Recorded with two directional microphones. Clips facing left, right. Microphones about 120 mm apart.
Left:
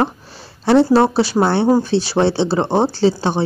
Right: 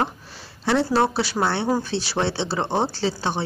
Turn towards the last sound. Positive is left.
turn(degrees=35)  # may be behind; listen again after turning